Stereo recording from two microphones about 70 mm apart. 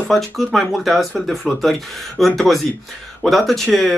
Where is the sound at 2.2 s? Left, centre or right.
Centre.